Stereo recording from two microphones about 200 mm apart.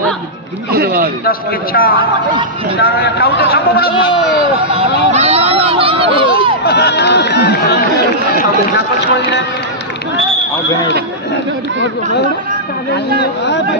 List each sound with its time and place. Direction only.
0.7 s a man's voice: 50° right (ahead or behind)
1.2 s a man's voice: 45° left (ahead or behind)
2.0 s a man's voice: 25° right (ahead or behind)
2.8 s a man's voice: 50° left (ahead or behind)
4.6 s a sound: 30° right (ahead or behind)
6.6 s speech: 55° left (ahead or behind)